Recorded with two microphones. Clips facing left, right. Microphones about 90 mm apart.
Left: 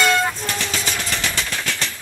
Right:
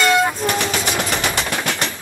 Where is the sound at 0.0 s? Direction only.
10° right (ahead or behind).